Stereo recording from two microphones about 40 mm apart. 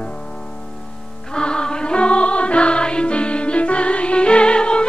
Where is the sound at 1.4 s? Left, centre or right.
Left.